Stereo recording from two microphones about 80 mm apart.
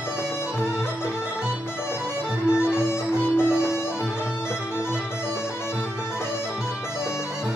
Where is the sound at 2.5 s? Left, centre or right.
Left.